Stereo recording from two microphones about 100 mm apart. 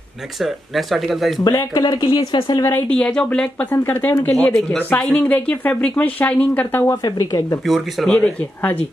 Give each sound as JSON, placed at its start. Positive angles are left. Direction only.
{"t": 0.4, "sound": "speech", "side_deg": 0}
{"t": 1.4, "sound": "speech", "side_deg": 40}
{"t": 2.3, "sound": "speech", "side_deg": 60}
{"t": 2.9, "sound": "speech", "side_deg": 10}
{"t": 3.7, "sound": "speech", "side_deg": 20}
{"t": 6.8, "sound": "speech", "side_deg": 35}
{"t": 7.6, "sound": "speech", "side_deg": 0}
{"t": 8.1, "sound": "speech", "side_deg": 15}